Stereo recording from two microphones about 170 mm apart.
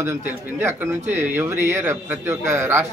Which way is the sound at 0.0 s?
15° right (ahead or behind).